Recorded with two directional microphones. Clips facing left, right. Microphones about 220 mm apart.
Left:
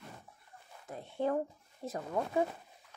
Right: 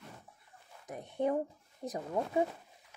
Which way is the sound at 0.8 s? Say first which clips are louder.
Right 1 dB; 15° right (ahead or behind).